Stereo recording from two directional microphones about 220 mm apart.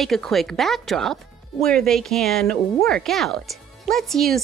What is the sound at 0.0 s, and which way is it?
Speech, centre (ahead or behind).